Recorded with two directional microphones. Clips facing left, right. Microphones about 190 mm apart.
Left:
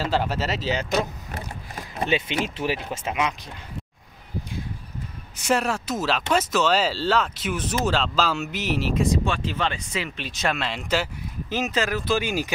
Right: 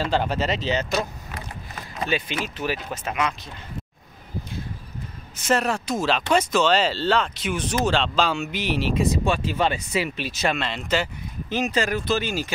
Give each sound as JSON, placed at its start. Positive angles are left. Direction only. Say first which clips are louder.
{"t": 0.0, "sound": "speech", "louder": "right 1 dB", "side_deg": 5}
{"t": 2.0, "sound": "speech", "louder": "left 2 dB", "side_deg": 25}
{"t": 5.5, "sound": "speech", "louder": "right 1 dB", "side_deg": 5}